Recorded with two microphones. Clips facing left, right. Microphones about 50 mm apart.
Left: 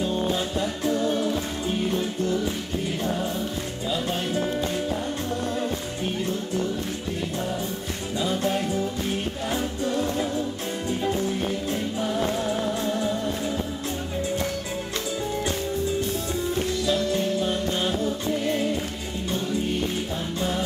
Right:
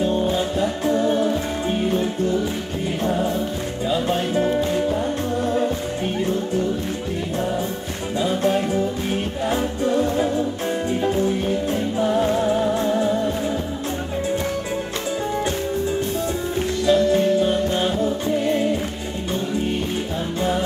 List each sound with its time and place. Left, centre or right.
0.0 s music: centre
0.8 s music: right
3.0 s music: right
8.2 s music: centre
16.8 s music: centre